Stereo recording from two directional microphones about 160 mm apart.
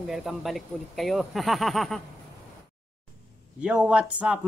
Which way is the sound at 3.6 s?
5° right (ahead or behind).